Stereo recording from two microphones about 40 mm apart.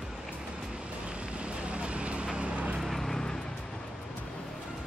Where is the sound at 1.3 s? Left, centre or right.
Right.